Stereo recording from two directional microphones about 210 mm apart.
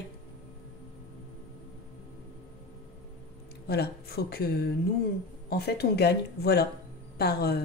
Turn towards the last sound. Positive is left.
turn(degrees=50)  # may be behind; listen again after turning